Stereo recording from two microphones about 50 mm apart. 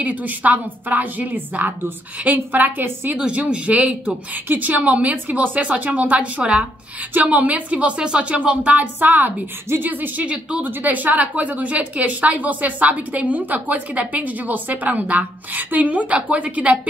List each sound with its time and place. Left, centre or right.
0.0 s a woman's voice: right
3.2 s a woman's voice: right
10.2 s speech: right
10.6 s a woman's voice: right